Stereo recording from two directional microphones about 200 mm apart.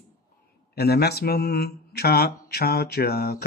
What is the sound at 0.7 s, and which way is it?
Mantra, 55° left (ahead or behind).